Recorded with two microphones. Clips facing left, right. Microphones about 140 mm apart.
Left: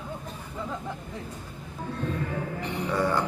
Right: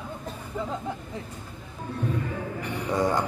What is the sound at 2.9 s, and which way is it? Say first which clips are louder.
Music: right 2 dB; 15° right (ahead or behind).